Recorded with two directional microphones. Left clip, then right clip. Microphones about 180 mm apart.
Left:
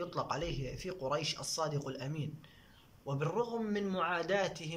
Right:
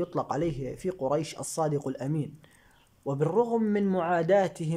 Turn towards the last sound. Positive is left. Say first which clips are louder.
# right 10 dB
turn(degrees=-40)  # may be behind; listen again after turning